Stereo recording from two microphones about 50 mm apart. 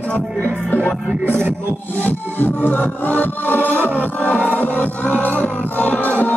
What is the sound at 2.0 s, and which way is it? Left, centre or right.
Music, left.